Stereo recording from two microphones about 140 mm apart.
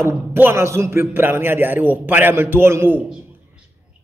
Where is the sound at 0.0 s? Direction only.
15° right (ahead or behind).